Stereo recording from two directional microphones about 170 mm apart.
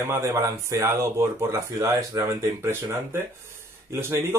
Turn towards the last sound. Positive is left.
turn(degrees=-15)  # may be behind; listen again after turning